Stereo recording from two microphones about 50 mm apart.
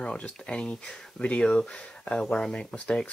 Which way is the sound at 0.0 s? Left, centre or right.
Left.